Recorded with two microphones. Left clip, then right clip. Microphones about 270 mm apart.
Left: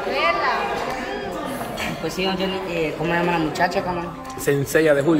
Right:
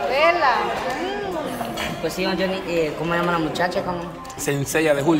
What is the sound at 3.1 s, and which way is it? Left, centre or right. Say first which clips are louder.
Speech: even; centre.